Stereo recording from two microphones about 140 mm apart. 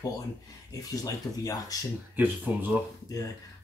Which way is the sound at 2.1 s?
15° right (ahead or behind).